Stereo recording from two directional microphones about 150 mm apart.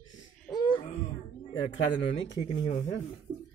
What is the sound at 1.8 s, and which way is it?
Speech, 30° left (ahead or behind).